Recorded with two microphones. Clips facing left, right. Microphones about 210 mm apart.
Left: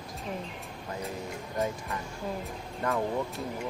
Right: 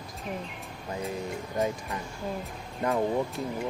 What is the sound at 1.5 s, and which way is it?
Speech, 15° right (ahead or behind).